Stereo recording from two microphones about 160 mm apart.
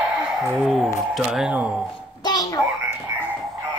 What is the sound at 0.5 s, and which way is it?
A child's voice, centre (ahead or behind).